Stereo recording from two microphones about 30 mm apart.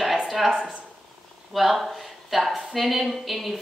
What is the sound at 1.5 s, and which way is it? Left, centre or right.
A woman's voice, centre.